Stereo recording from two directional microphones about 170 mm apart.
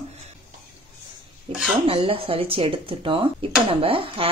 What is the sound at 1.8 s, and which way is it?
Speech, 35° right (ahead or behind).